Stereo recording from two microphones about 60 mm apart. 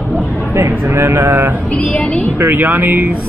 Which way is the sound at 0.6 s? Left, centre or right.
Right.